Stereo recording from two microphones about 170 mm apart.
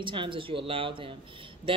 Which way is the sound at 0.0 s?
30° right (ahead or behind).